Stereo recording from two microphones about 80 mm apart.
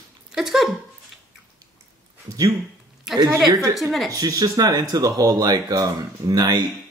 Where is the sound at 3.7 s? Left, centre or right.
Centre.